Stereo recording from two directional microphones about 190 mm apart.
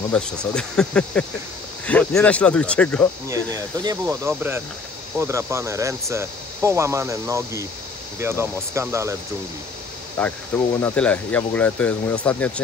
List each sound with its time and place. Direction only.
0.1 s speech: 5° left (ahead or behind)
3.5 s speech: 20° right (ahead or behind)
10.2 s speech: 5° left (ahead or behind)